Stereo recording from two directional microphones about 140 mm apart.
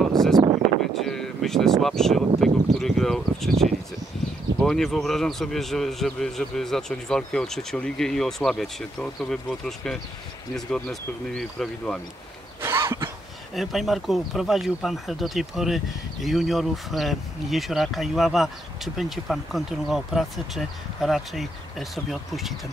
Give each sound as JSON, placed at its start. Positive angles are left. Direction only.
{"t": 0.0, "sound": "a sound", "side_deg": 0}
{"t": 0.4, "sound": "a sound", "side_deg": -25}
{"t": 0.9, "sound": "speech", "side_deg": 5}
{"t": 4.6, "sound": "a man's voice", "side_deg": 5}
{"t": 12.6, "sound": "cough", "side_deg": -20}
{"t": 13.6, "sound": "a man's voice", "side_deg": 0}